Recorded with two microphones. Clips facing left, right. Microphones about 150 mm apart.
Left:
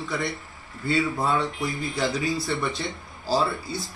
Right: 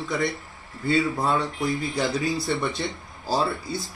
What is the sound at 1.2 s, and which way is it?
Speech, centre (ahead or behind).